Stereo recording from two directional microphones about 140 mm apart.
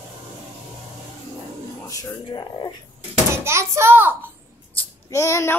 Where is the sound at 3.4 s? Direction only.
20° right (ahead or behind).